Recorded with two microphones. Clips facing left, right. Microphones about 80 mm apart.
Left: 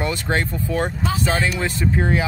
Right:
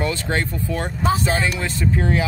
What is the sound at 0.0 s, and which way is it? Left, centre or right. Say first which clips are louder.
Speech: even; left.